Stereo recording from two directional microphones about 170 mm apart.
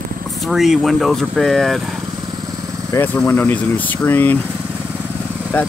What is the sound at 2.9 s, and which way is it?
Speech, 10° left (ahead or behind).